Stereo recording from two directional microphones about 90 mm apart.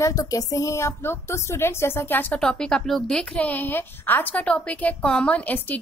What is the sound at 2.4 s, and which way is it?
A woman's voice, 10° left (ahead or behind).